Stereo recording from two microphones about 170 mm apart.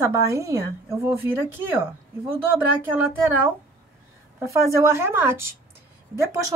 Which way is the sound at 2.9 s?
15° right (ahead or behind).